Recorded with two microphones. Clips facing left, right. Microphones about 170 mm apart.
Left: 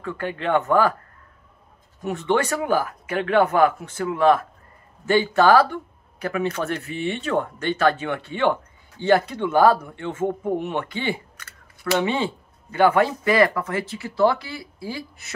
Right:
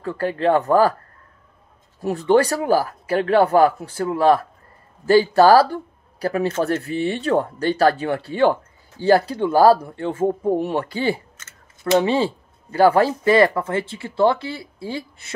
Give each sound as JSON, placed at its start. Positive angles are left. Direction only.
{"t": 0.0, "sound": "speech", "side_deg": -35}
{"t": 2.0, "sound": "speech", "side_deg": -35}
{"t": 11.3, "sound": "scissors", "side_deg": -25}
{"t": 12.0, "sound": "speech", "side_deg": -35}